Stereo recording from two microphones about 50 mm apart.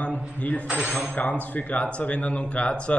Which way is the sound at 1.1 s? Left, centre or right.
Left.